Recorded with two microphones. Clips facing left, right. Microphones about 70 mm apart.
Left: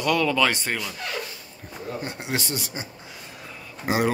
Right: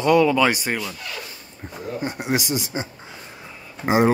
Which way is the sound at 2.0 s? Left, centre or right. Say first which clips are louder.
Right 8 dB; centre.